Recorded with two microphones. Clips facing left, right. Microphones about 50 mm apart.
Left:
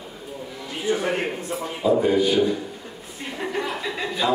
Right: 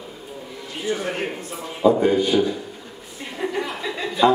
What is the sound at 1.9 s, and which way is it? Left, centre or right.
Speech, right.